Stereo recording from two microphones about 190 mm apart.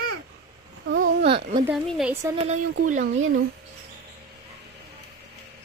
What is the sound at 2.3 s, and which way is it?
Speech, 35° right (ahead or behind).